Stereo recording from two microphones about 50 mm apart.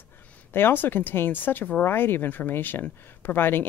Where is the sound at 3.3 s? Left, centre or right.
Left.